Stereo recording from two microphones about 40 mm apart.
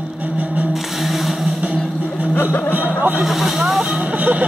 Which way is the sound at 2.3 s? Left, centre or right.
Left.